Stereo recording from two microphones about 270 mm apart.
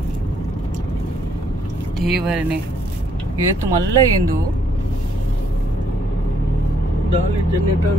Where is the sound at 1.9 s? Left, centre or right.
Centre.